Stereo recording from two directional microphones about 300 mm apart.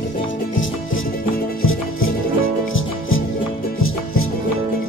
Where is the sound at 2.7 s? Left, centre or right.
Left.